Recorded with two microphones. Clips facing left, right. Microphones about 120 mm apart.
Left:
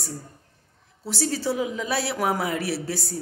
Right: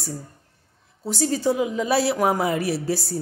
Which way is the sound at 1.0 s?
Centre (ahead or behind).